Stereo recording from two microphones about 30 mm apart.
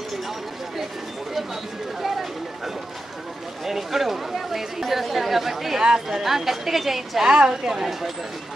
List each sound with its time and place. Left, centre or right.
2.0 s a sound: centre
3.6 s a woman's voice: centre
7.2 s a woman's voice: right